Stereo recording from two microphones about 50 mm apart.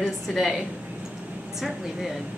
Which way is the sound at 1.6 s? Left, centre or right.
Centre.